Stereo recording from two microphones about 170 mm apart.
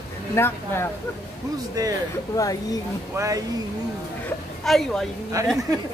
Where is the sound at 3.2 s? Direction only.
20° right (ahead or behind).